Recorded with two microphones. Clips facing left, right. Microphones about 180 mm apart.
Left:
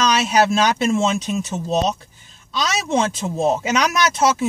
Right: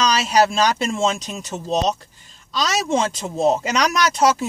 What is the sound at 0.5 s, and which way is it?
Speech, 5° left (ahead or behind).